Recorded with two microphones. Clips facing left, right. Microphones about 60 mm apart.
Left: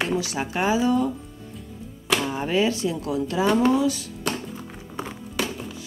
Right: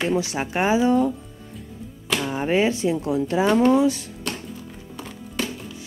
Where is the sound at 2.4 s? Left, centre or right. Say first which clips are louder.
Right 4 dB; right.